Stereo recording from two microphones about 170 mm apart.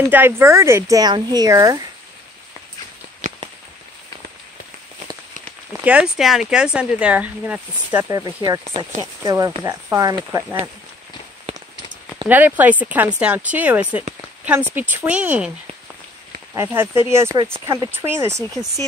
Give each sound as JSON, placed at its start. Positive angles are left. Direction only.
{"t": 0.1, "sound": "speech", "side_deg": -15}
{"t": 3.2, "sound": "a sound", "side_deg": -40}
{"t": 5.7, "sound": "speech", "side_deg": -5}
{"t": 12.3, "sound": "speech", "side_deg": -10}
{"t": 16.5, "sound": "speech", "side_deg": -15}